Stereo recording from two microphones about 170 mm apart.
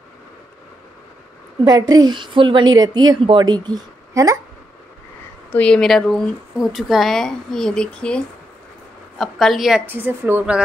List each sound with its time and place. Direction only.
1.6 s a woman's voice: 25° right (ahead or behind)
5.5 s speech: 5° left (ahead or behind)
9.2 s speech: centre (ahead or behind)